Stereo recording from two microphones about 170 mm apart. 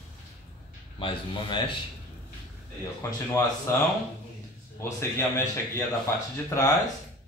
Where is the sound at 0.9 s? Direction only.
30° left (ahead or behind).